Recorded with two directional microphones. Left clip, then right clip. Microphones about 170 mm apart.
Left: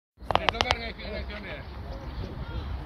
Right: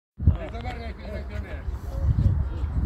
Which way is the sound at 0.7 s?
20° right (ahead or behind).